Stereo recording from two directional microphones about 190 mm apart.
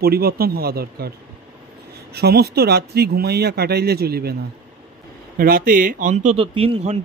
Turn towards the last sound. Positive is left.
turn(degrees=-30)  # may be behind; listen again after turning